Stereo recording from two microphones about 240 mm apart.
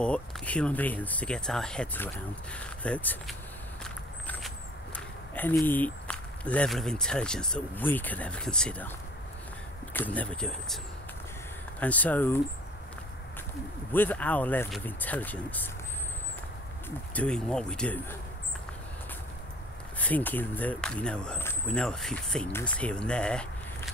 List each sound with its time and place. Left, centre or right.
0.0 s speech: centre
3.8 s a sound: centre
4.9 s speech: centre
9.9 s speech: centre
11.8 s speech: centre
13.9 s speech: centre
17.1 s speech: centre
20.0 s speech: centre